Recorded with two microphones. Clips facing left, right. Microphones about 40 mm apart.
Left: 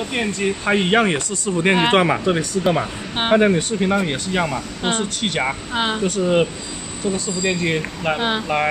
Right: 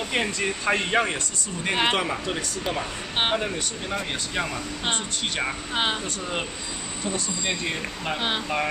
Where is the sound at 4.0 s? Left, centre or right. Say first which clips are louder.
Left 8 dB; left.